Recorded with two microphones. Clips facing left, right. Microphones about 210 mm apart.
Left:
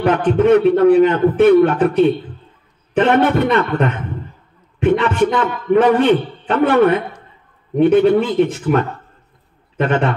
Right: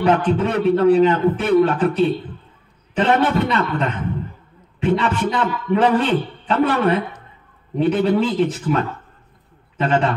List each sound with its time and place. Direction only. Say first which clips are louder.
0.0 s a man's voice: left 3 dB; 55° left (ahead or behind)